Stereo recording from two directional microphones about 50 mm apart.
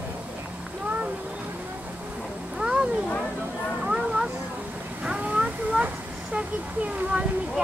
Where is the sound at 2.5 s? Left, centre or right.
Centre.